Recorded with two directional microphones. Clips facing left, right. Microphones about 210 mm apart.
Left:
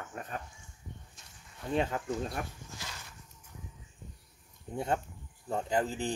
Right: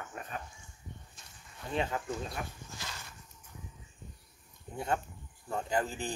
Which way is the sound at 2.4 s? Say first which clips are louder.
Left 2 dB; 50° left (ahead or behind).